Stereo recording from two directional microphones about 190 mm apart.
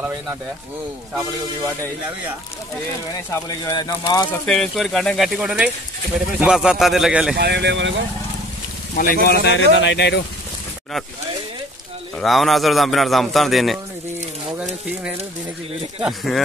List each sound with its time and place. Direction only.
3.4 s speech: 20° left (ahead or behind)
4.3 s a man's voice: 5° left (ahead or behind)
7.3 s speech: 60° right (ahead or behind)
8.9 s speech: 55° left (ahead or behind)
12.2 s a man's voice: centre (ahead or behind)
16.0 s a man's voice: centre (ahead or behind)